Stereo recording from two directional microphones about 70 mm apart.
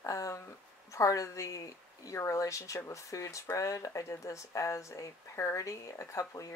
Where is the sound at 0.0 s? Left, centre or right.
Left.